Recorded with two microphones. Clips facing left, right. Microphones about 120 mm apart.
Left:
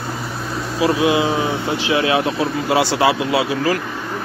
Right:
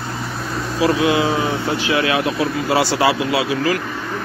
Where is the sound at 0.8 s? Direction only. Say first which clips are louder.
Even; 20° left (ahead or behind).